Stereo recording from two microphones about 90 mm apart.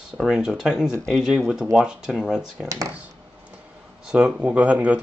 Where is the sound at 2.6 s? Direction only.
40° right (ahead or behind).